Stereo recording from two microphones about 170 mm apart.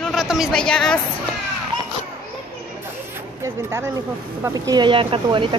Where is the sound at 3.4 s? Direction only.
15° right (ahead or behind).